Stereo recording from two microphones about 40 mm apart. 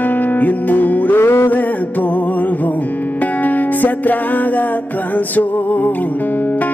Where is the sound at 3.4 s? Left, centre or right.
Left.